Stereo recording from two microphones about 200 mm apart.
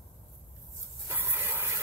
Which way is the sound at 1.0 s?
10° right (ahead or behind).